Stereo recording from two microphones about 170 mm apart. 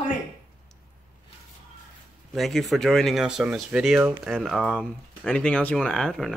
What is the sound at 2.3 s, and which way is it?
Speech, centre (ahead or behind).